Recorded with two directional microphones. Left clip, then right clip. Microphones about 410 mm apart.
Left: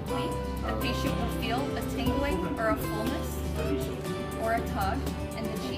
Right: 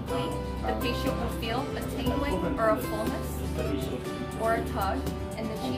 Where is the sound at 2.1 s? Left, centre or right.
Centre.